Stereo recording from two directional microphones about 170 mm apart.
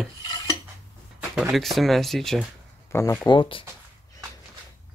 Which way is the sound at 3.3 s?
30° left (ahead or behind).